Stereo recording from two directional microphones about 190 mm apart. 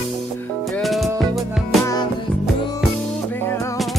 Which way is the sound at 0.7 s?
Centre (ahead or behind).